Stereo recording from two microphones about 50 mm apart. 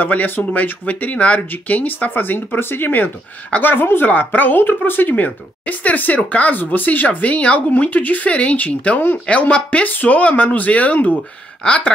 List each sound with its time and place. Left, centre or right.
0.0 s a woman's voice: left
3.4 s a woman's voice: left
3.7 s a woman's voice: left
9.2 s a woman's voice: left